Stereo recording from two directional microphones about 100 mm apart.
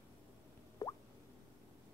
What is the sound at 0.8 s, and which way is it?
Plop, 35° left (ahead or behind).